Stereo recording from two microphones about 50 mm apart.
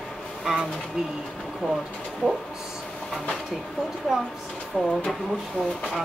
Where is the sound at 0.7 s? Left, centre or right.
Centre.